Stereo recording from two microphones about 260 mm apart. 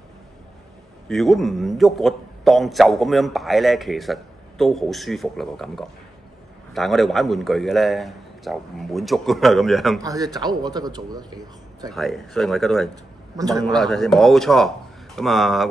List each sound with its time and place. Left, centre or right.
1.0 s a man's voice: centre
10.0 s a man's voice: centre
11.9 s a man's voice: centre